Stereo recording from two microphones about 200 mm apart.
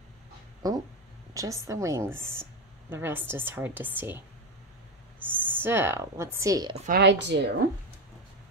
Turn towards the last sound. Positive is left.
turn(degrees=-60)  # may be behind; listen again after turning